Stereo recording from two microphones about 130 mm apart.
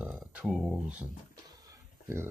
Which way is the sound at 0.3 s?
10° right (ahead or behind).